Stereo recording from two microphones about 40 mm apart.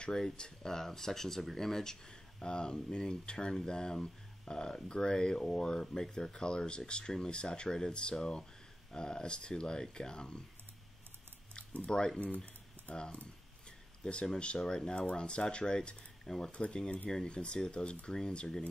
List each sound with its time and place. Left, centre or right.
0.0 s speech: centre
11.8 s speech: left
12.9 s speech: left
13.7 s speech: left
16.3 s speech: centre
16.5 s speech: left